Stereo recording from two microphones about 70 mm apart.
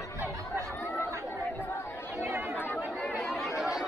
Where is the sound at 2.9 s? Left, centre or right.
Centre.